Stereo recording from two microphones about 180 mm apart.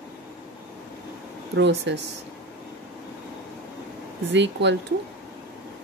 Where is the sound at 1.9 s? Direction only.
75° right (ahead or behind).